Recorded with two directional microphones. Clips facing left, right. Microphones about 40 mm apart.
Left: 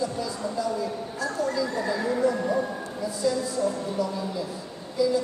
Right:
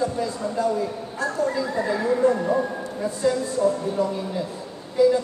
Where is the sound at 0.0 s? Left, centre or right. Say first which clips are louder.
Right 4 dB; right.